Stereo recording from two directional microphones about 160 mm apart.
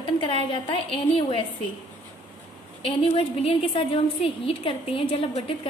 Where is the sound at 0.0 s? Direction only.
35° left (ahead or behind).